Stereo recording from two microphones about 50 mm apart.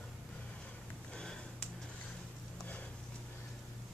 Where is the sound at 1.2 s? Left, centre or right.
Centre.